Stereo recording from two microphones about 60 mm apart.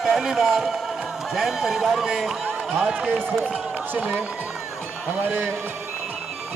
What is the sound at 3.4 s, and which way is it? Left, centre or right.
Speech, right.